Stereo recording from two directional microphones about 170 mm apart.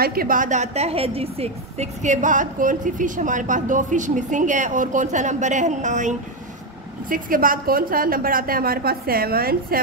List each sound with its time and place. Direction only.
0.0 s a woman's voice: 60° right (ahead or behind)